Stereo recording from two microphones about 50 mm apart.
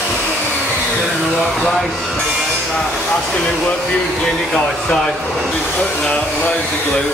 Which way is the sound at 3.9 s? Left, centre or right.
Centre.